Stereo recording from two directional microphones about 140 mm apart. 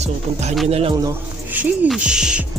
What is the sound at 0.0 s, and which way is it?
Music, 50° right (ahead or behind).